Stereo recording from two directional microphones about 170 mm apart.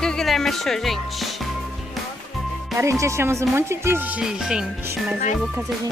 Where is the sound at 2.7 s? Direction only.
15° right (ahead or behind).